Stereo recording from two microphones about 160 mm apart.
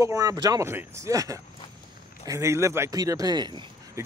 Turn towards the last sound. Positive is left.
turn(degrees=-20)  # may be behind; listen again after turning